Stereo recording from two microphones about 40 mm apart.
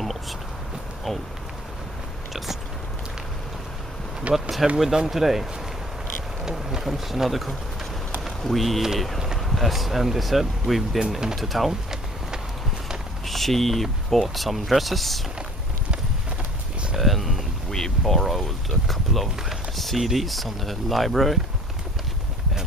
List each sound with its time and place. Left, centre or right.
4.3 s speech: right
4.7 s speech: centre
11.0 s speech: centre
11.3 s speech: centre
13.3 s speech: centre
16.9 s a sound: centre
17.6 s speech: centre